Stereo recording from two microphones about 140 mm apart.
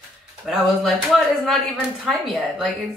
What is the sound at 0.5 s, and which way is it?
Speech, centre (ahead or behind).